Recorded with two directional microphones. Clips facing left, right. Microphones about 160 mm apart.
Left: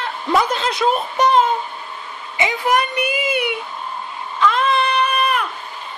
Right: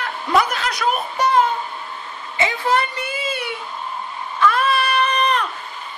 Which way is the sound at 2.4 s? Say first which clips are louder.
Left 1 dB; 15° left (ahead or behind).